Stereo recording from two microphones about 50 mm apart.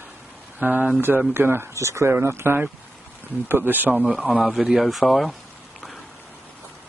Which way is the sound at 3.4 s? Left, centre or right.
Right.